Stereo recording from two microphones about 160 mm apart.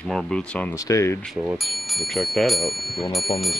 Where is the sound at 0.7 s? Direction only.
20° left (ahead or behind).